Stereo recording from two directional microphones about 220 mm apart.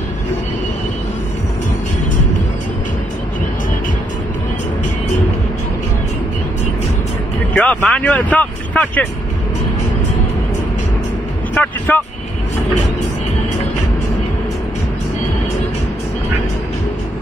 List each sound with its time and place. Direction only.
7.5 s speech: 5° left (ahead or behind)
11.5 s vehicle: 5° left (ahead or behind)